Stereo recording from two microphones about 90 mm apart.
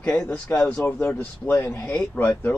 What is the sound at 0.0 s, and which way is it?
Speech, 15° left (ahead or behind).